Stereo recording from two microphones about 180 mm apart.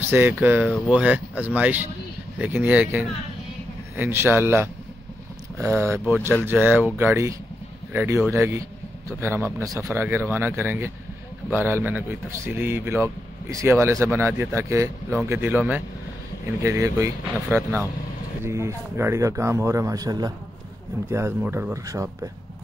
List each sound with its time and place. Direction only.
0.0 s a man's voice: 10° right (ahead or behind)